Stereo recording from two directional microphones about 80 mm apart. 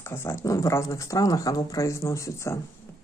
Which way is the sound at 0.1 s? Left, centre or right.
Left.